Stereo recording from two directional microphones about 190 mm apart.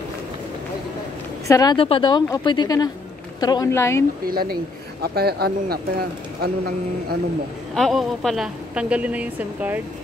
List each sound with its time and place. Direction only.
1.5 s a woman's voice: 20° left (ahead or behind)
4.3 s speech: 50° right (ahead or behind)
7.7 s a woman's voice: centre (ahead or behind)